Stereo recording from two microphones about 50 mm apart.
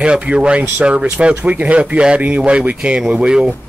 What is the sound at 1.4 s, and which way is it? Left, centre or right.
Speech, right.